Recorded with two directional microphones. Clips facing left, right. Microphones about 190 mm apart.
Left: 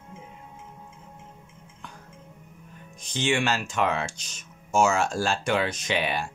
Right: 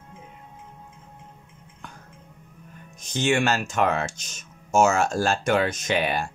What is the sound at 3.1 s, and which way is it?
Speech, 45° right (ahead or behind).